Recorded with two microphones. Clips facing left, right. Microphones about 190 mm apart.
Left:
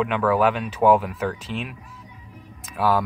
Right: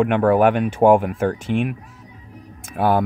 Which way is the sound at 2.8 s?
55° right (ahead or behind).